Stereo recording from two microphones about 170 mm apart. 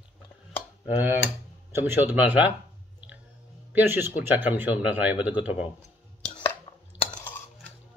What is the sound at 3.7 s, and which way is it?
Speech, 10° right (ahead or behind).